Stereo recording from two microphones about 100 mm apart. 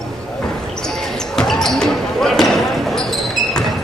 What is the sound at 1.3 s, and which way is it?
Basketball bounce, 5° left (ahead or behind).